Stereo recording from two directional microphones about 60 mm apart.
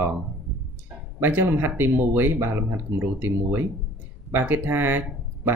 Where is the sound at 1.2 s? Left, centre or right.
Right.